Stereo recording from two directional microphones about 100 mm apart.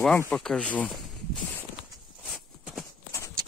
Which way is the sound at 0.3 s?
5° left (ahead or behind).